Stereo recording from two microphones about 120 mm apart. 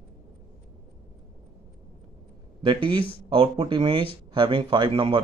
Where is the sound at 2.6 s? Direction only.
45° right (ahead or behind).